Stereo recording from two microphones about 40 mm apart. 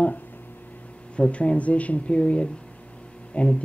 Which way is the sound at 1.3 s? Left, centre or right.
Left.